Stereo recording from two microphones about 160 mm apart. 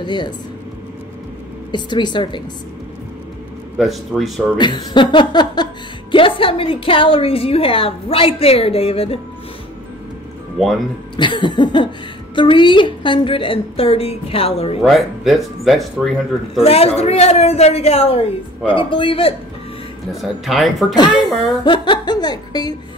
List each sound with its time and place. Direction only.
0.0 s music: 30° left (ahead or behind)
1.7 s music: 30° left (ahead or behind)
3.7 s speech: centre (ahead or behind)
4.6 s music: 30° left (ahead or behind)
6.1 s a woman's voice: 35° left (ahead or behind)
11.1 s music: 30° left (ahead or behind)
12.4 s a woman's voice: 30° left (ahead or behind)
14.8 s speech: centre (ahead or behind)
16.6 s a woman's voice: 40° left (ahead or behind)
20.1 s speech: centre (ahead or behind)
20.9 s music: 25° left (ahead or behind)